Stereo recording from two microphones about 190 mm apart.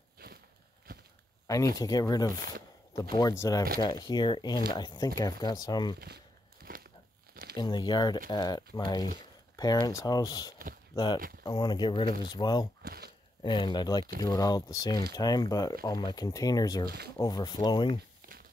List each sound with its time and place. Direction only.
1.8 s speech: 20° left (ahead or behind)
6.6 s crumpling: 50° right (ahead or behind)
7.5 s speech: 20° left (ahead or behind)
12.8 s a sound: 55° right (ahead or behind)
13.4 s speech: 25° left (ahead or behind)
16.8 s speech: 60° right (ahead or behind)
17.2 s speech: 20° left (ahead or behind)